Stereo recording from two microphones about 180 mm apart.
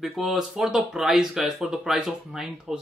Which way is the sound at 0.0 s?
Centre (ahead or behind).